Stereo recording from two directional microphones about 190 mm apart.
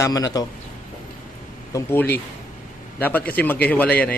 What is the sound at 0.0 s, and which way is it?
Speech, 20° left (ahead or behind).